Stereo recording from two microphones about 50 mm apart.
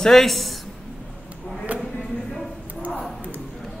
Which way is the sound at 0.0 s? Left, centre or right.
Centre.